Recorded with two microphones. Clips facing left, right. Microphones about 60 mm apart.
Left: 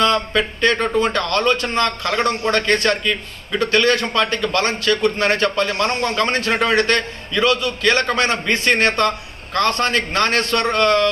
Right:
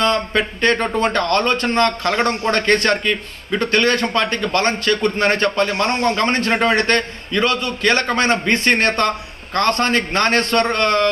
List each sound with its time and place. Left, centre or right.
0.0 s speech: right
0.7 s a man's voice: right